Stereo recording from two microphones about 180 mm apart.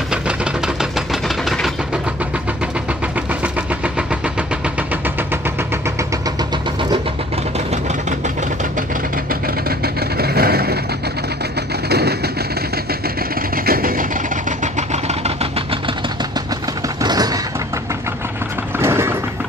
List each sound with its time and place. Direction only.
9.3 s vehicle: 60° right (ahead or behind)
11.9 s vehicle: 65° right (ahead or behind)
13.7 s vehicle: 55° right (ahead or behind)
14.6 s vehicle: 40° right (ahead or behind)
17.0 s mechanisms: 20° right (ahead or behind)
18.8 s mechanisms: 15° right (ahead or behind)